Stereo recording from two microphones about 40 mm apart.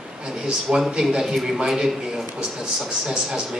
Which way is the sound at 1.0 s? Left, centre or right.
Centre.